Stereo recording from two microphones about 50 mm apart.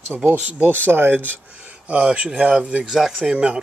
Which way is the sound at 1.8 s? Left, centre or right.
Right.